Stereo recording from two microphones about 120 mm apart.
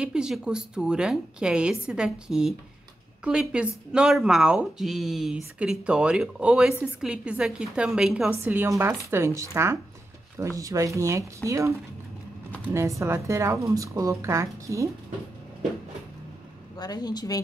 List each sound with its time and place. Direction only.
0.0 s a woman's voice: 5° right (ahead or behind)
8.3 s speech: 20° right (ahead or behind)
12.7 s speech: 25° right (ahead or behind)
16.7 s speech: 35° left (ahead or behind)